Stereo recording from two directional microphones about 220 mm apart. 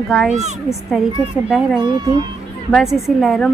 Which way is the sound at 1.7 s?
20° right (ahead or behind).